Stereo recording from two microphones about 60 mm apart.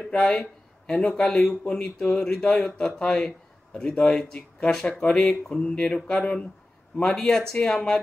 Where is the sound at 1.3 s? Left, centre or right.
Centre.